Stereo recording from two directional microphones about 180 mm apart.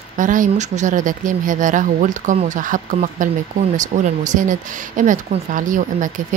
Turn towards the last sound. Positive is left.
turn(degrees=-45)  # may be behind; listen again after turning